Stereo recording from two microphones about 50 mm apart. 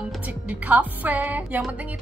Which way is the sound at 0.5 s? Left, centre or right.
Right.